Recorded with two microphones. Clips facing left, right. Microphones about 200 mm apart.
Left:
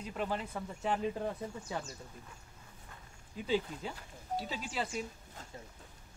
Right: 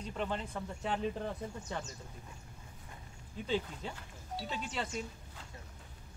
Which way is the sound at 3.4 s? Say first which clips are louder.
Left 2 dB; 5° left (ahead or behind).